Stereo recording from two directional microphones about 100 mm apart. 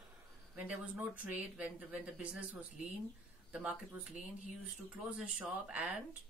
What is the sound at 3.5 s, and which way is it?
Speech, 10° right (ahead or behind).